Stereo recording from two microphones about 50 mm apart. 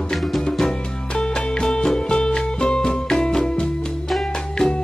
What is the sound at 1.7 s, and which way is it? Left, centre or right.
Music, centre.